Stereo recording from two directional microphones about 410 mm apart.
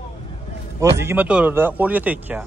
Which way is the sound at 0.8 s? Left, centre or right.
Centre.